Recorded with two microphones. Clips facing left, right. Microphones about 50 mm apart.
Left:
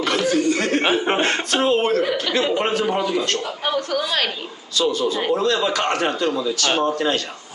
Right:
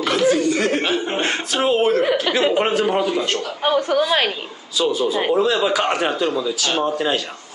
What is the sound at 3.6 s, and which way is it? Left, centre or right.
A woman's voice, centre.